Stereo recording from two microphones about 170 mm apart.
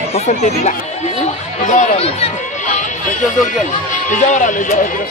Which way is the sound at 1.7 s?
40° left (ahead or behind).